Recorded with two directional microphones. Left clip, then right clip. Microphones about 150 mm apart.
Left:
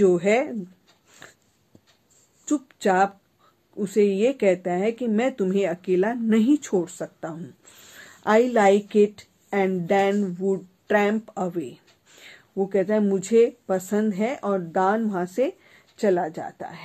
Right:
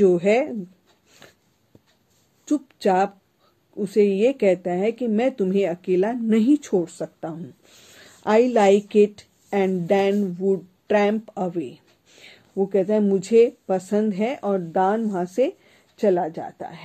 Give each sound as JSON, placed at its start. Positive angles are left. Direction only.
{"t": 0.0, "sound": "speech", "side_deg": -35}
{"t": 1.2, "sound": "a sound", "side_deg": -40}
{"t": 2.4, "sound": "speech", "side_deg": -35}